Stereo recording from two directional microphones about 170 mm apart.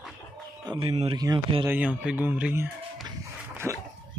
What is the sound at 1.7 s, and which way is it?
Speech, 5° right (ahead or behind).